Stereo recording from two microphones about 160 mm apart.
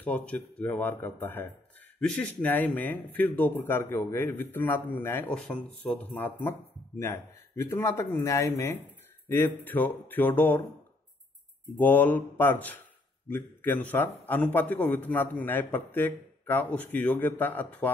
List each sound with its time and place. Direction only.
0.0 s a man's voice: 10° left (ahead or behind)
11.7 s a man's voice: 10° left (ahead or behind)